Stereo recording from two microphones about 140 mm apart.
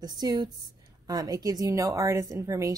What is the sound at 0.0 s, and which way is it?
A woman's voice, 30° right (ahead or behind).